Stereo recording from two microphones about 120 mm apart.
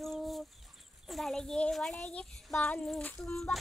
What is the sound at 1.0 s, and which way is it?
A child's voice, centre (ahead or behind).